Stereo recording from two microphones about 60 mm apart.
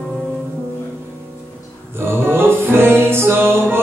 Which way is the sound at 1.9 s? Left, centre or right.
Right.